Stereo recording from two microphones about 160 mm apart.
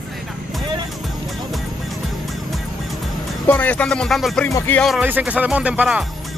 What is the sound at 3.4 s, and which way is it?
A man's voice, 10° left (ahead or behind).